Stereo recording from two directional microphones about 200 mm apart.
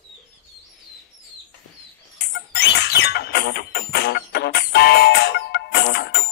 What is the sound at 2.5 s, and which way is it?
Music, 55° left (ahead or behind).